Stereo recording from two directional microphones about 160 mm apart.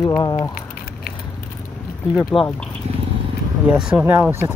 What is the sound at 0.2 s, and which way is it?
Speech, 25° left (ahead or behind).